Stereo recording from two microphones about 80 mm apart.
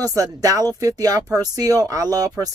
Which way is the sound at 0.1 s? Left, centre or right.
Right.